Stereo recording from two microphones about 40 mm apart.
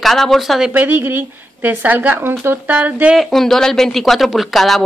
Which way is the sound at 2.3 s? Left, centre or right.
Right.